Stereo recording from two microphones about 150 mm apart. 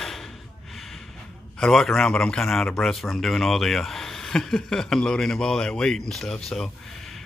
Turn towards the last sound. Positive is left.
turn(degrees=0)  # may be behind; listen again after turning